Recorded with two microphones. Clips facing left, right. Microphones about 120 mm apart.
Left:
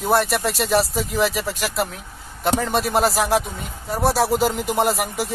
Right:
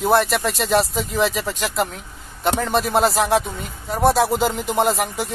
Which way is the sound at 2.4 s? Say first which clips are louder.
Right 1 dB; centre (ahead or behind).